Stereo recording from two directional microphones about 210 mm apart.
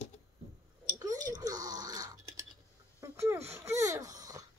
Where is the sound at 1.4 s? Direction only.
15° right (ahead or behind).